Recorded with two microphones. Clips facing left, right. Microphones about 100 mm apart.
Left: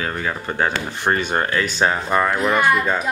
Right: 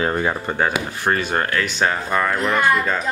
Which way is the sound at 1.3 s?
10° left (ahead or behind).